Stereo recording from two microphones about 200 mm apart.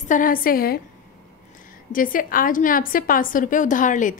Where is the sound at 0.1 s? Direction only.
45° left (ahead or behind).